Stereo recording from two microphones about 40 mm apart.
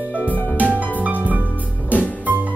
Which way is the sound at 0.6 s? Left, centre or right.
Right.